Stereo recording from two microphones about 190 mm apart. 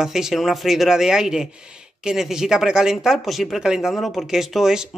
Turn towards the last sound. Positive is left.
turn(degrees=-5)  # may be behind; listen again after turning